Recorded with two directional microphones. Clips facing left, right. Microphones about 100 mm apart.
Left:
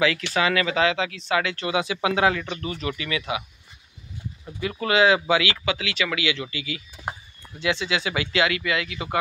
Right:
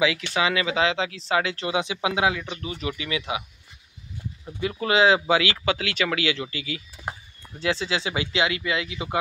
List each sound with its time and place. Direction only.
0.3 s speech: 20° right (ahead or behind)
4.6 s speech: 25° right (ahead or behind)